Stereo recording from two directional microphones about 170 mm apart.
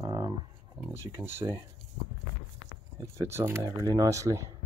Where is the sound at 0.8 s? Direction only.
15° right (ahead or behind).